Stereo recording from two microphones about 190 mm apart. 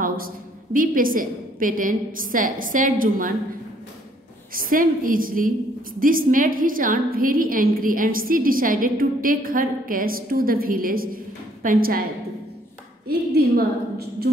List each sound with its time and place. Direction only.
0.7 s a woman's voice: 45° right (ahead or behind)
4.6 s a woman's voice: 45° right (ahead or behind)
13.3 s a woman's voice: 55° right (ahead or behind)